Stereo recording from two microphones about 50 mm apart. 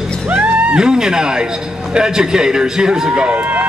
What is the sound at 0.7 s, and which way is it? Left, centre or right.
A man's voice, centre.